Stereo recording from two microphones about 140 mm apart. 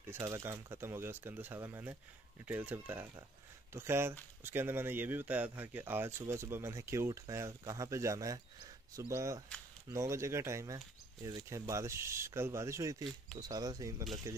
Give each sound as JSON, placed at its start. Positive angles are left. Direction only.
{"t": 0.0, "sound": "speech", "side_deg": -20}